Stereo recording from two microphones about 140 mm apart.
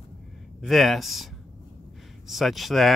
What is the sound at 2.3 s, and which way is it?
Speech, centre (ahead or behind).